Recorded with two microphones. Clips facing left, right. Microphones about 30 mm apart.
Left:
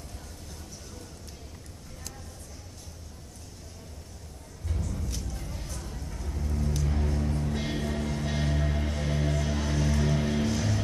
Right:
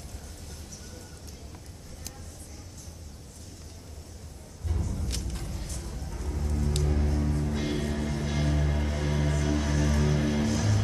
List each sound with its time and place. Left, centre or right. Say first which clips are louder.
4.6 s music: right 1 dB; centre
5.0 s vehicle: right 1 dB; right
5.8 s a sound: even; centre
6.1 s rain on surface: right 4 dB; centre
6.9 s music: right 1 dB; centre